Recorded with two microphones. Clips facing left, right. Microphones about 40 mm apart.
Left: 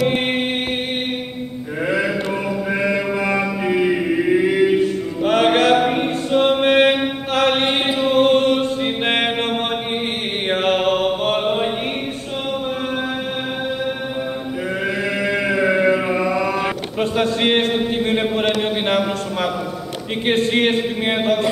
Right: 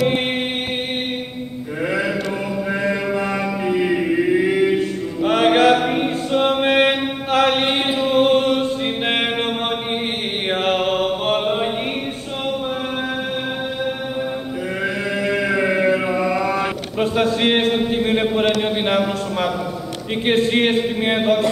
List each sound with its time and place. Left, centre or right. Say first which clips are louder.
1.9 s a sound: left 2 dB; centre
2.9 s mantra: left 1 dB; centre
3.8 s chant: right 1 dB; centre
15.2 s chant: even; centre
16.2 s mantra: even; centre
18.6 s a sound: even; centre